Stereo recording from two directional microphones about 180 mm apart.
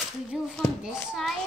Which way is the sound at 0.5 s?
Centre (ahead or behind).